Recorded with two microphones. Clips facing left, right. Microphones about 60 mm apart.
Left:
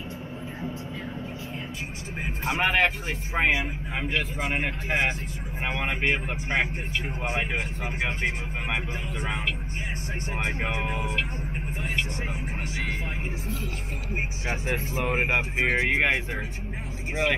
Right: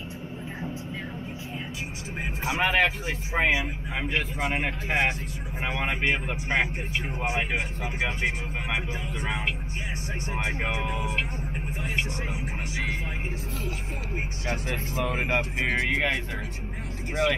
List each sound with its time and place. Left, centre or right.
2.6 s speech: centre
6.6 s speech: centre
8.7 s speech: centre
10.8 s speech: centre
14.4 s speech: centre